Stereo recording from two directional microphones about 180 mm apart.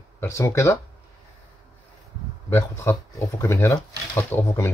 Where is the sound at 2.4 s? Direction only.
15° left (ahead or behind).